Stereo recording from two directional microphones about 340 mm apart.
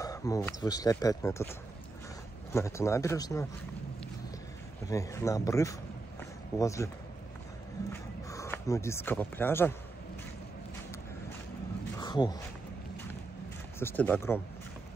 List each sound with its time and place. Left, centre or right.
0.0 s speech: centre
2.5 s speech: centre
4.8 s speech: centre
7.9 s speech: centre
12.0 s a sound: centre
13.7 s speech: centre